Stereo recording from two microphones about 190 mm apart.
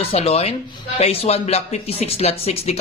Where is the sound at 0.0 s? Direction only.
30° left (ahead or behind).